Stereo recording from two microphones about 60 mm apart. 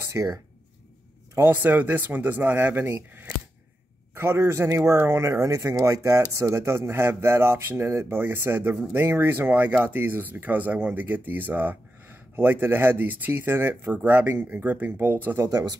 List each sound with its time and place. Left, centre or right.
0.1 s speech: right
1.4 s speech: right
4.1 s speech: right
4.6 s speech: right
4.9 s speech: right
5.5 s speech: right
15.4 s speech: right